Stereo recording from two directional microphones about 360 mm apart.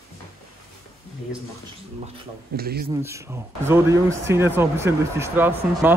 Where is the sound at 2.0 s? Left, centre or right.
Right.